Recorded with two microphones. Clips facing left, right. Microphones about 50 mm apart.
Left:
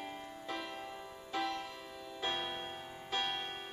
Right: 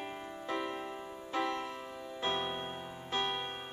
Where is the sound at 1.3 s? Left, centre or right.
Right.